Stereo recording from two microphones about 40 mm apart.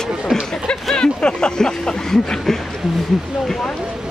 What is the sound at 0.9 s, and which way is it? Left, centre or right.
Speech, left.